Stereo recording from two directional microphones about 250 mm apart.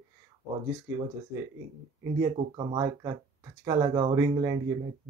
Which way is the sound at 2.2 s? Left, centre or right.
Centre.